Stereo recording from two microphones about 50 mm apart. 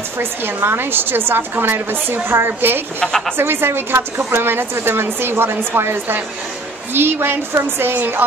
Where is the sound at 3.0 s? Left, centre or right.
Centre.